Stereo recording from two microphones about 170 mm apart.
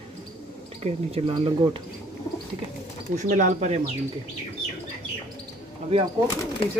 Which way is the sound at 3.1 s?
45° right (ahead or behind).